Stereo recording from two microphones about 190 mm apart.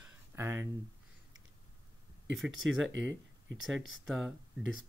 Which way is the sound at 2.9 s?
70° right (ahead or behind).